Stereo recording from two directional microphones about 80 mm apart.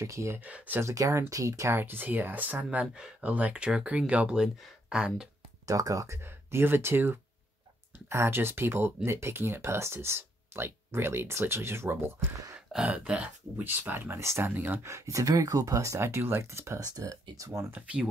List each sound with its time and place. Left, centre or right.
0.0 s speech: right
0.4 s speech: centre
0.7 s speech: right
1.8 s speech: right; by 5.3 s centre
5.7 s speech: right
12.5 s a sound: centre
13.7 s speech: right
17.7 s speech: centre